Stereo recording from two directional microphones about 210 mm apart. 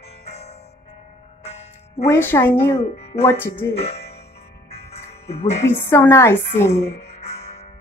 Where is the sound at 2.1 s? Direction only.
10° left (ahead or behind).